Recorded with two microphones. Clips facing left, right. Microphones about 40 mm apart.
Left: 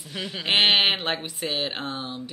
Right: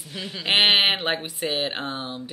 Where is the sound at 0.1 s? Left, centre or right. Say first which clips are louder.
Left 1 dB; centre.